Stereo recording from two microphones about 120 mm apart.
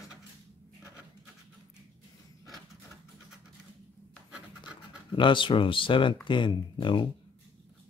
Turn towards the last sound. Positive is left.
turn(degrees=40)  # may be behind; listen again after turning